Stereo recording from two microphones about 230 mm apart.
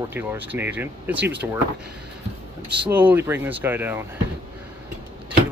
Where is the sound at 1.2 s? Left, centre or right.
Right.